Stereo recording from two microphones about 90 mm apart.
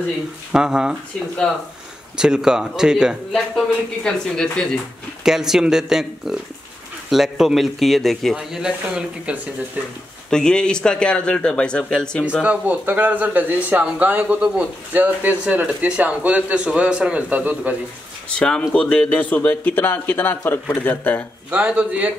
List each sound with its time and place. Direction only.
0.5 s speech: 5° right (ahead or behind)
2.1 s speech: 5° right (ahead or behind)
5.2 s a man's voice: 5° right (ahead or behind)
10.3 s speech: 10° left (ahead or behind)
12.3 s speech: 15° right (ahead or behind)
18.4 s speech: 10° left (ahead or behind)
21.5 s speech: 15° right (ahead or behind)